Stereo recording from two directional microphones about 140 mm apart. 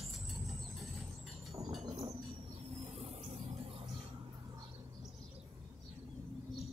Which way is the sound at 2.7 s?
45° right (ahead or behind).